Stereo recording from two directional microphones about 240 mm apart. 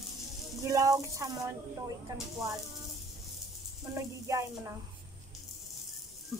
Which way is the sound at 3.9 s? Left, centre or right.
Centre.